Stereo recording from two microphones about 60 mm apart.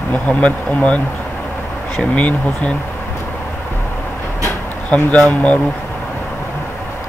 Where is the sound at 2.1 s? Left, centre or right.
Left.